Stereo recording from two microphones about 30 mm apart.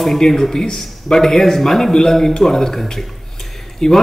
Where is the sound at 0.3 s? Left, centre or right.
Centre.